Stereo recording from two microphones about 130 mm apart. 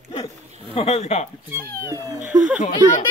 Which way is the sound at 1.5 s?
15° right (ahead or behind).